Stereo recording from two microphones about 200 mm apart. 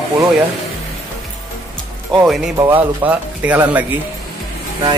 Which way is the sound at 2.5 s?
10° right (ahead or behind).